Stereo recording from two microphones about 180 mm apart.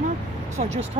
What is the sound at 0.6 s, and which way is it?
Speech, 40° right (ahead or behind).